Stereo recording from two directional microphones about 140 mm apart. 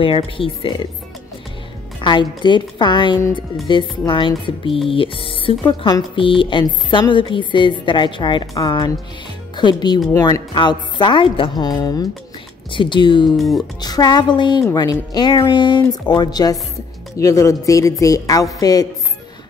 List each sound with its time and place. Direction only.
0.0 s speech: 40° left (ahead or behind)
2.0 s a woman's voice: 35° left (ahead or behind)